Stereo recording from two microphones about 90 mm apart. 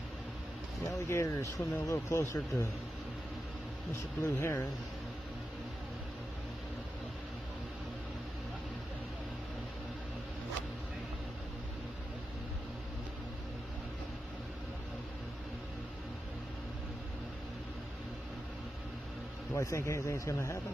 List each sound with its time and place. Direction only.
1.0 s speech: 35° left (ahead or behind)
4.2 s speech: 30° left (ahead or behind)
19.5 s speech: 35° left (ahead or behind)